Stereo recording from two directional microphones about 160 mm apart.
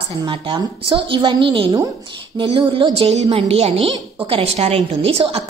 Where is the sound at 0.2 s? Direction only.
30° right (ahead or behind).